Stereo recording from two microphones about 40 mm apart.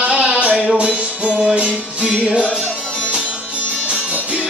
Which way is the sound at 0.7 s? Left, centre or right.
Right.